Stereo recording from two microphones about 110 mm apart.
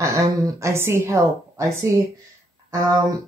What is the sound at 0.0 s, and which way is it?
Speech, 25° right (ahead or behind).